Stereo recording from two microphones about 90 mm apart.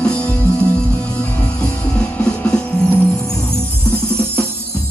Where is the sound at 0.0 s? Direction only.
10° left (ahead or behind).